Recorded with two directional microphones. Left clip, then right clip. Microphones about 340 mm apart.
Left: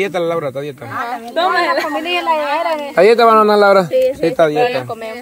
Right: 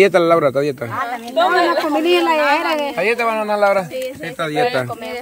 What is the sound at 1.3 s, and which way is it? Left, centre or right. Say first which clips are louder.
Speech: even; left.